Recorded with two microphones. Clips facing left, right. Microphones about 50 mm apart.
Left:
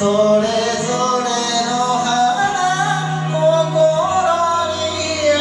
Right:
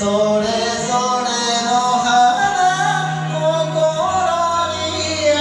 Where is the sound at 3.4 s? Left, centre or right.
Centre.